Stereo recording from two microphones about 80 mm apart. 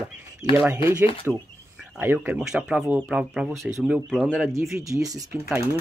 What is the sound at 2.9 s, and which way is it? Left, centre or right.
Speech, centre.